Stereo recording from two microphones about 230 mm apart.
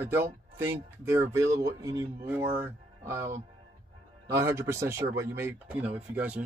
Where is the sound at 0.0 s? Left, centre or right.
Centre.